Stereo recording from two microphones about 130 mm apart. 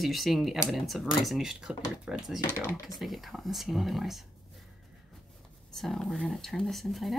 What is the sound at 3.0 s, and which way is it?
Speech, centre (ahead or behind).